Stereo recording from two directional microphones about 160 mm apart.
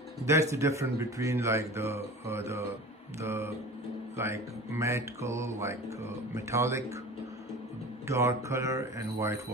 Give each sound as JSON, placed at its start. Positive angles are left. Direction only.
{"t": 0.3, "sound": "speech", "side_deg": -20}
{"t": 8.1, "sound": "speech", "side_deg": -20}